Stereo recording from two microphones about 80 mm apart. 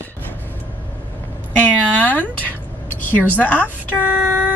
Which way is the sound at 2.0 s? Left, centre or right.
Centre.